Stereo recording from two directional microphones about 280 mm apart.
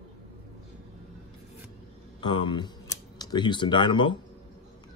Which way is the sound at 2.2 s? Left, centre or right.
Centre.